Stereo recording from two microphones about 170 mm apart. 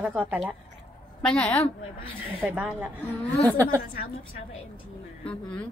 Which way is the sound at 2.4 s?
5° right (ahead or behind).